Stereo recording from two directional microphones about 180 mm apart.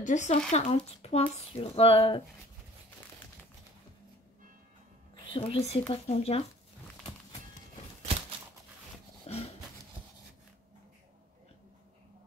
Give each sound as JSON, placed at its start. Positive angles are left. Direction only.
{"t": 0.0, "sound": "speech", "side_deg": 40}
{"t": 5.1, "sound": "speech", "side_deg": 30}
{"t": 9.3, "sound": "a sound", "side_deg": 35}